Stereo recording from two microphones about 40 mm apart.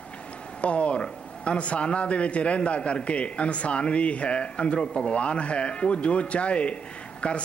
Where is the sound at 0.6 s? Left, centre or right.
Left.